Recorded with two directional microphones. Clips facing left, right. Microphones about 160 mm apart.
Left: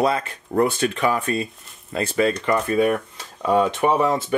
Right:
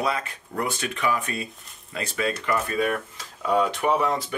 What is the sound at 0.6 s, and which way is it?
Speech, 30° left (ahead or behind).